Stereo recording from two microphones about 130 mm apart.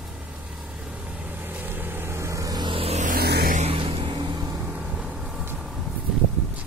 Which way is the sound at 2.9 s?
70° right (ahead or behind).